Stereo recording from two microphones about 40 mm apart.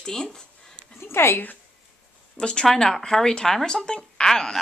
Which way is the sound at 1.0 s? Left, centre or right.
Left.